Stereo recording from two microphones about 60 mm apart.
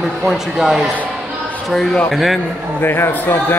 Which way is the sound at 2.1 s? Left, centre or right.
Centre.